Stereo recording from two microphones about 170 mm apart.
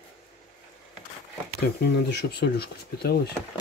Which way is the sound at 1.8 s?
90° left.